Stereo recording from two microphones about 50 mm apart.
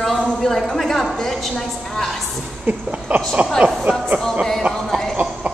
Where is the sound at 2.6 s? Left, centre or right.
Right.